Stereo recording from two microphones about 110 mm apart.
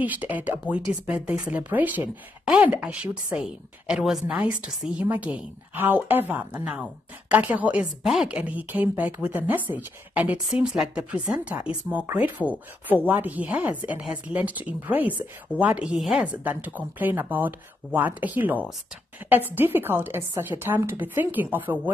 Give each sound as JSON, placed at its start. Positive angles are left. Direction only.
{"t": 0.0, "sound": "a woman's voice", "side_deg": -15}
{"t": 8.4, "sound": "a woman's voice", "side_deg": -15}